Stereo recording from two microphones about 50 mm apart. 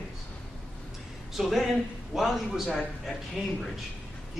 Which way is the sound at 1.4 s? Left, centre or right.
Centre.